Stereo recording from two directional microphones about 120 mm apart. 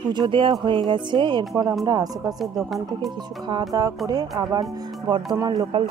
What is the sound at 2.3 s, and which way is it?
Speech, centre (ahead or behind).